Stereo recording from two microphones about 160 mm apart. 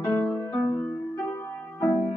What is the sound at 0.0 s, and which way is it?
Music, 10° left (ahead or behind).